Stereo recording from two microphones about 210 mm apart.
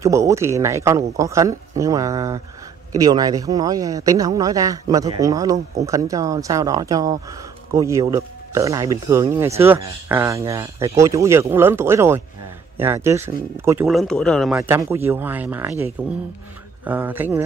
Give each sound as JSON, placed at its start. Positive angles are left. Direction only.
{"t": 0.0, "sound": "speech", "side_deg": -15}
{"t": 13.8, "sound": "speech", "side_deg": 0}
{"t": 14.6, "sound": "speech", "side_deg": -10}